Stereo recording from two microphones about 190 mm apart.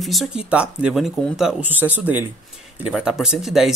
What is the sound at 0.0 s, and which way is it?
Speech, centre (ahead or behind).